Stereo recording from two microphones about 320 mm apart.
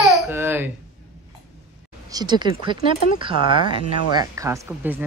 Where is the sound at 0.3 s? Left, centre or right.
Centre.